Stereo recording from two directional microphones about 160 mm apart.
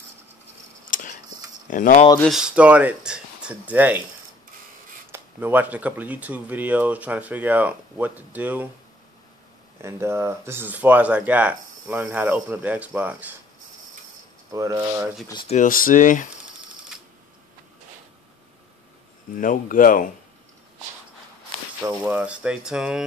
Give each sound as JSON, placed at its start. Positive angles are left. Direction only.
{"t": 0.8, "sound": "tick-tock", "side_deg": 55}
{"t": 1.7, "sound": "speech", "side_deg": 50}
{"t": 2.2, "sound": "speech", "side_deg": -5}
{"t": 5.1, "sound": "speech", "side_deg": -10}
{"t": 9.8, "sound": "speech", "side_deg": -15}
{"t": 14.5, "sound": "speech", "side_deg": -20}
{"t": 15.4, "sound": "speech", "side_deg": 50}
{"t": 19.3, "sound": "speech", "side_deg": 55}
{"t": 22.0, "sound": "speech", "side_deg": -5}